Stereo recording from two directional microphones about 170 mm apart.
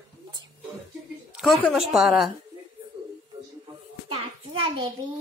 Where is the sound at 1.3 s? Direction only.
Centre (ahead or behind).